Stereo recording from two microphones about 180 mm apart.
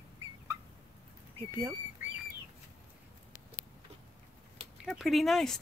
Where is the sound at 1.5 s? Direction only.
5° right (ahead or behind).